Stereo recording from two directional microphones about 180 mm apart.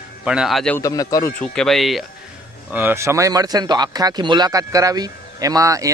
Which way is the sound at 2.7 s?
10° right (ahead or behind).